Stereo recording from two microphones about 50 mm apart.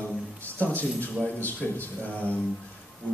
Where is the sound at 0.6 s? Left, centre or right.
Left.